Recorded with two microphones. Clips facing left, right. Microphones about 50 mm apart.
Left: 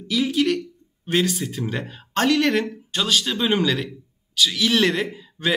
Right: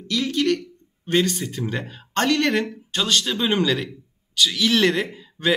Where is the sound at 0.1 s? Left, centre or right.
Centre.